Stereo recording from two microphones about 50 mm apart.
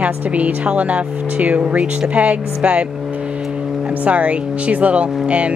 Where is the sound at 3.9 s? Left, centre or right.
Right.